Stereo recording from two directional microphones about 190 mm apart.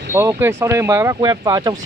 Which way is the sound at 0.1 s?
15° right (ahead or behind).